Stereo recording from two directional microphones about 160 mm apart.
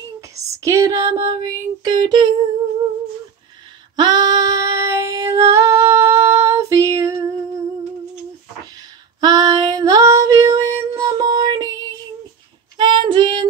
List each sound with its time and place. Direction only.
0.6 s child singing: 20° right (ahead or behind)
3.9 s female singing: 25° right (ahead or behind)
9.2 s female singing: 25° right (ahead or behind)
12.7 s female singing: 30° right (ahead or behind)